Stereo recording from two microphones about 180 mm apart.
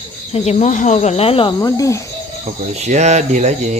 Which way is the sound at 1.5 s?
20° left (ahead or behind).